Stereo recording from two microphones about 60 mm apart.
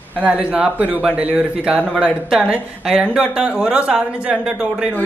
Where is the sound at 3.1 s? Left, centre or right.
Centre.